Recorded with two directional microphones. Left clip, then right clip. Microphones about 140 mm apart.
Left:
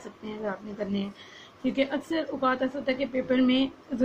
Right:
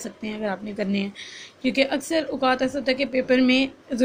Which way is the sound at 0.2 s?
45° right (ahead or behind).